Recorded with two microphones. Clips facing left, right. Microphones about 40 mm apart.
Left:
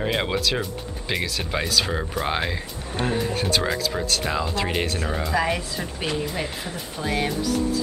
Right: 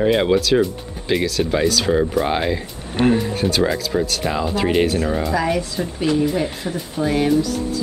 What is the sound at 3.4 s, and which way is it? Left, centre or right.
Speech, centre.